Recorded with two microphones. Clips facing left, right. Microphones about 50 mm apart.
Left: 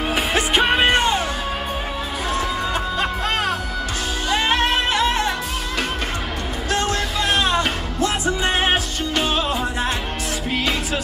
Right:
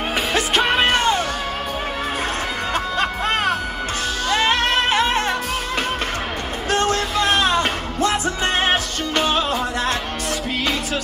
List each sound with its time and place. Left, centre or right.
0.1 s music: centre
2.7 s music: right
6.7 s music: right
8.3 s music: left
9.1 s music: right